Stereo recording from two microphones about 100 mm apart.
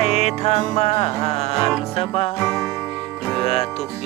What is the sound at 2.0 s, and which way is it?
Music, 75° left (ahead or behind).